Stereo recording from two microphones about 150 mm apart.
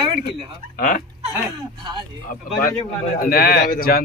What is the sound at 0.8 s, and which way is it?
Speech, 60° left (ahead or behind).